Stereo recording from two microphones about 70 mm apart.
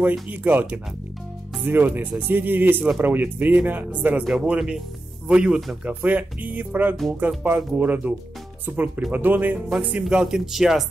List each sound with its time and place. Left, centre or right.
0.0 s speech: right
4.3 s speech: centre; by 9.6 s right
10.0 s speech: centre